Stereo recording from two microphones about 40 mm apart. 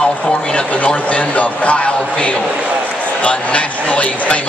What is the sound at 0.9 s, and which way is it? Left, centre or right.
A man's voice, left.